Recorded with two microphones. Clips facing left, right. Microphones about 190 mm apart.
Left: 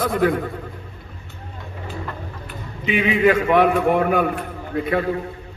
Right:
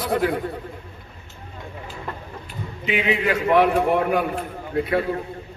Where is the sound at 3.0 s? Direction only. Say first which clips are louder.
Left 6 dB; 50° left (ahead or behind).